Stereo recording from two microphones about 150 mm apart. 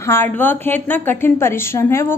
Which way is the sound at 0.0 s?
15° left (ahead or behind).